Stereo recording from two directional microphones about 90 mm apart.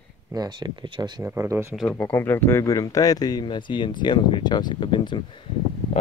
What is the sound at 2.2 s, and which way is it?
Speech, 25° left (ahead or behind).